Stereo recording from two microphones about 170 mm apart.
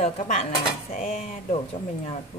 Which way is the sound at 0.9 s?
55° left (ahead or behind).